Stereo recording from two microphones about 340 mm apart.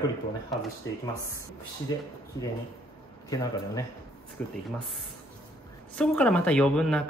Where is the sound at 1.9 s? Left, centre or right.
Centre.